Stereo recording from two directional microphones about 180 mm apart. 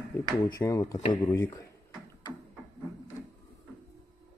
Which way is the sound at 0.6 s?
20° left (ahead or behind).